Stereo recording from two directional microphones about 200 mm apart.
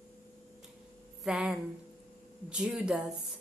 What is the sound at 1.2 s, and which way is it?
A woman's voice, centre (ahead or behind).